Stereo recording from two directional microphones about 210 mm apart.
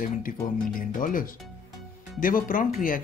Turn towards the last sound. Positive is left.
turn(degrees=40)  # may be behind; listen again after turning